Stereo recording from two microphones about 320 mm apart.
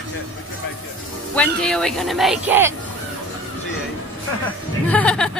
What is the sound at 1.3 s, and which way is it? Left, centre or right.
Speech, centre.